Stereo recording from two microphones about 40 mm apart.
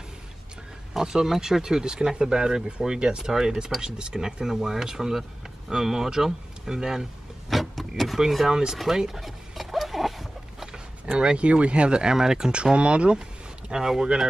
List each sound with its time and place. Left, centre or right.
0.9 s speech: centre
7.4 s vehicle: centre
8.2 s speech: centre
8.7 s a sound: centre
11.1 s speech: right
12.7 s speech: right
13.7 s speech: centre